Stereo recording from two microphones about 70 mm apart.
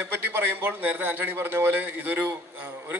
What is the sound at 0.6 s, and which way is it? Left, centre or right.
A man's voice, right.